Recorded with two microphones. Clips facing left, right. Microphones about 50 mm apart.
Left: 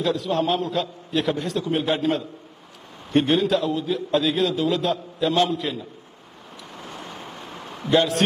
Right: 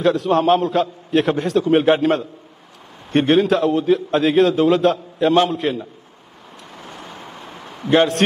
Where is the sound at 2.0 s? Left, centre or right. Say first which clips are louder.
Right 5 dB; right.